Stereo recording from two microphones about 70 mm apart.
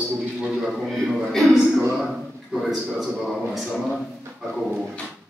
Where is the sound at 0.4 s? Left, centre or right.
Centre.